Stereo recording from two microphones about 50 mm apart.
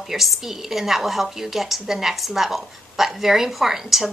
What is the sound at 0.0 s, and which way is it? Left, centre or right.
A woman's voice, centre.